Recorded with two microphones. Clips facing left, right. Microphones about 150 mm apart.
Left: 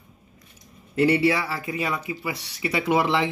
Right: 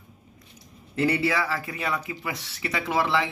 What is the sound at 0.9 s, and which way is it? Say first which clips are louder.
Speech: left 4 dB; 10° left (ahead or behind).